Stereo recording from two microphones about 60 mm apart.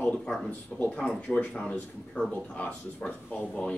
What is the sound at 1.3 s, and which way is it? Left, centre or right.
Speech, left.